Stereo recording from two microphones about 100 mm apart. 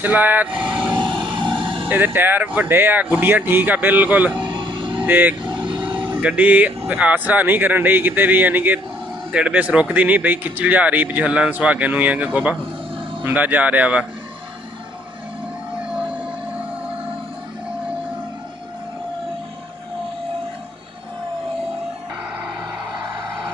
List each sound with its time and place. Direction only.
0.0 s speech: 15° right (ahead or behind)
0.9 s music: 50° right (ahead or behind)
1.9 s speech: 20° right (ahead or behind)
4.4 s vehicle: 55° right (ahead or behind)
5.0 s speech: 20° right (ahead or behind)
5.4 s vehicle: 50° right (ahead or behind)
6.2 s speech: 15° right (ahead or behind)